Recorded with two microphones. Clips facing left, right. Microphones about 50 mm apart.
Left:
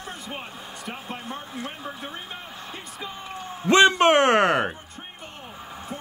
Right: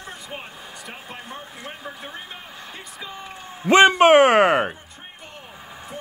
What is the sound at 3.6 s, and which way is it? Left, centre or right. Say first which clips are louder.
A man's voice: right 3 dB; right.